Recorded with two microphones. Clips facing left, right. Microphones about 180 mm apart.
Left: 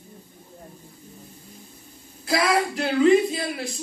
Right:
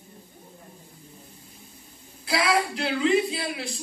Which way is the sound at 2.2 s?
45° left (ahead or behind).